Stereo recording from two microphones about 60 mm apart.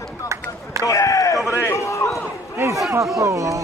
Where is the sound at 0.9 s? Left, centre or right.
Left.